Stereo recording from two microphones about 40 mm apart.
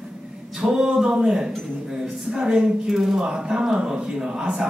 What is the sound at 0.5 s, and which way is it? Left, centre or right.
A man's voice, right.